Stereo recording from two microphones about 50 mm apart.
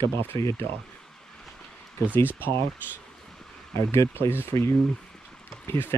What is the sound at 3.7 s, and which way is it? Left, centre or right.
Speech, left.